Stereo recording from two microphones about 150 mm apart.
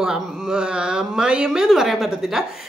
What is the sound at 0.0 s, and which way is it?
Speech, 5° right (ahead or behind).